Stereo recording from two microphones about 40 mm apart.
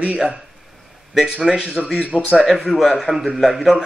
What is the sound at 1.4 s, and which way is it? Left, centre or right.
A man's voice, centre.